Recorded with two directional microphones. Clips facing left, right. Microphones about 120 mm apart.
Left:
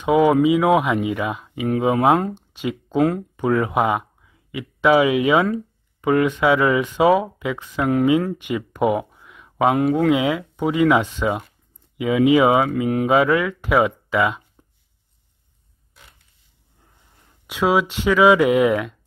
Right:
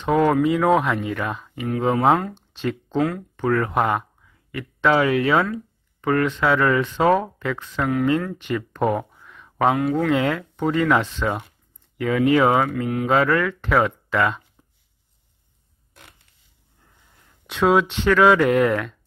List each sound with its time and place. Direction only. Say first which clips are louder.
0.0 s speech: left 3 dB; 10° left (ahead or behind)
2.3 s a sound: even; 10° left (ahead or behind)
3.0 s speech: left 4 dB; 30° left (ahead or behind)
3.3 s speech: even; 10° left (ahead or behind)
8.4 s a sound: left 2 dB; 15° left (ahead or behind)
9.8 s speech: left 3 dB; 25° left (ahead or behind)
10.0 s speech: left 2 dB; 10° left (ahead or behind)
17.5 s speech: right 1 dB; 10° left (ahead or behind)